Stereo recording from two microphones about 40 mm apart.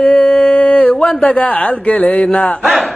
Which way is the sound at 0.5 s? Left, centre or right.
Left.